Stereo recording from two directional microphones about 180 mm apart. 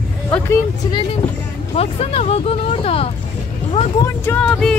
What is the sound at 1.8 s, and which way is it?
Speech, 35° left (ahead or behind).